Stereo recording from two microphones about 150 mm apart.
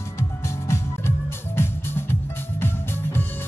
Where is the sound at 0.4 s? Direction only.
20° left (ahead or behind).